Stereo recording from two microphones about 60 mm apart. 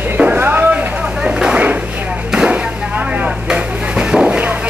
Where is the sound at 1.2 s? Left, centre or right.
Centre.